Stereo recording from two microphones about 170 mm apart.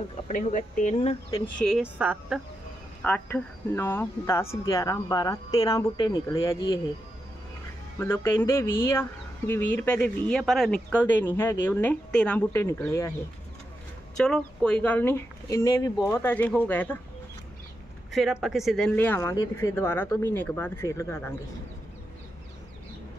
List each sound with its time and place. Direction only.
0.1 s speech: 50° left (ahead or behind)
1.6 s speech: centre (ahead or behind)
3.0 s speech: 10° left (ahead or behind)
8.0 s speech: 15° left (ahead or behind)
14.1 s speech: 5° left (ahead or behind)
18.1 s speech: centre (ahead or behind); by 21.4 s 15° left (ahead or behind)